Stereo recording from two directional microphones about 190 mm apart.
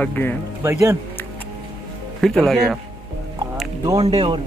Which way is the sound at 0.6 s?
15° right (ahead or behind).